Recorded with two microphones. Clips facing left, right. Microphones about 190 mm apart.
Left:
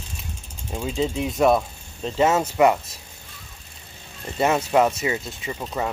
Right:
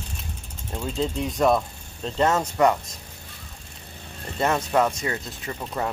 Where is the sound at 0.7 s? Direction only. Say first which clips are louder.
Left 2 dB; 5° left (ahead or behind).